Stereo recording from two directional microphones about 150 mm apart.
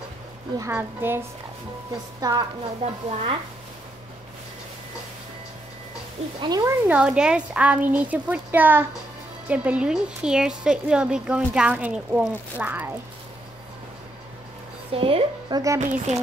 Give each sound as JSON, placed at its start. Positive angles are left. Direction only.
{"t": 0.6, "sound": "a woman's voice", "side_deg": -15}
{"t": 2.1, "sound": "speech", "side_deg": -25}
{"t": 2.8, "sound": "stir", "side_deg": -45}
{"t": 6.4, "sound": "speech", "side_deg": -25}
{"t": 7.0, "sound": "a woman's voice", "side_deg": -5}
{"t": 14.9, "sound": "a woman's voice", "side_deg": -40}
{"t": 15.8, "sound": "speech", "side_deg": -55}